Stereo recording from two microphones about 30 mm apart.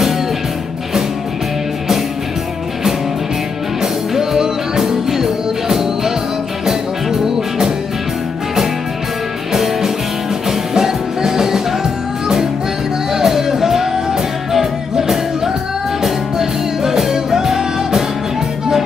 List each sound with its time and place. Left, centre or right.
3.8 s music: centre
9.5 s music: centre